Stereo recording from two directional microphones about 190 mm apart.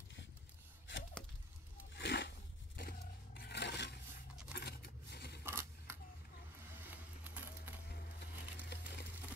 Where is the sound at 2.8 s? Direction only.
50° left (ahead or behind).